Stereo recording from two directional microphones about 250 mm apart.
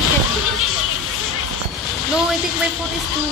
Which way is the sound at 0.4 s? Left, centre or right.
Left.